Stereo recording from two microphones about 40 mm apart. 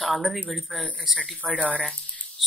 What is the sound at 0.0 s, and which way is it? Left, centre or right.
Speech, centre.